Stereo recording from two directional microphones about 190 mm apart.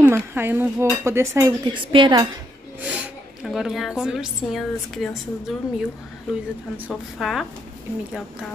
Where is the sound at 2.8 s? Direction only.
5° right (ahead or behind).